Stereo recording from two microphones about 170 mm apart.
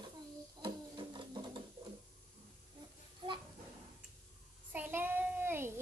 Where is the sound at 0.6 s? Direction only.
25° right (ahead or behind).